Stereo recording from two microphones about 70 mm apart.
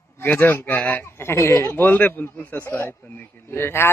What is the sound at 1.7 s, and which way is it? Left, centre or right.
Speech, left.